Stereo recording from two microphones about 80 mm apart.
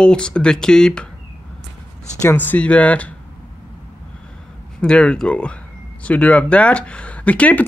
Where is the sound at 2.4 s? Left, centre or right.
Centre.